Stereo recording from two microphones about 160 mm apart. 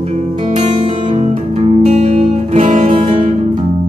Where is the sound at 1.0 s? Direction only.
35° right (ahead or behind).